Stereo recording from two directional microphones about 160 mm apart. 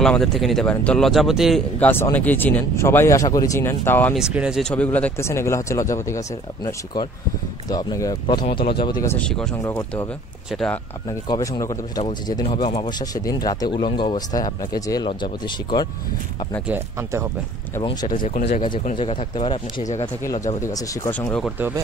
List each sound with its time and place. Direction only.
0.0 s speech: 5° left (ahead or behind)
1.8 s speech: 15° left (ahead or behind)
4.1 s speech: 5° right (ahead or behind); by 8.9 s 30° left (ahead or behind)
9.0 s speech: 15° left (ahead or behind)
9.3 s speech: 5° left (ahead or behind)
9.7 s speech: 15° left (ahead or behind)
10.5 s speech: 5° left (ahead or behind)
11.1 s speech: 25° left (ahead or behind)
13.1 s speech: 25° left (ahead or behind)
16.6 s speech: 15° right (ahead or behind)
18.1 s speech: 60° left (ahead or behind)
18.5 s speech: 30° left (ahead or behind)
20.6 s speech: 20° left (ahead or behind)
21.2 s speech: 5° left (ahead or behind)